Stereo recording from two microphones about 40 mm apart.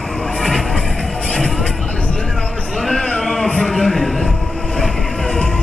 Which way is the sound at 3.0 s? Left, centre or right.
Left.